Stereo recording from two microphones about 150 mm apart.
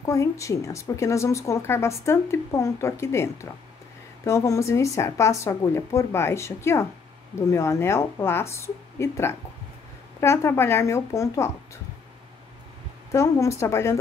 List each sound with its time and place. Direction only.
0.0 s a woman's voice: 20° left (ahead or behind)
13.1 s speech: 20° left (ahead or behind)